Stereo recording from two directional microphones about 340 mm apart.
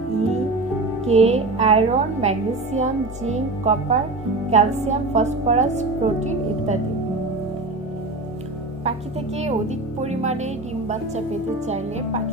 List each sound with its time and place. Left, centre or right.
1.0 s a woman's voice: centre
9.4 s a woman's voice: centre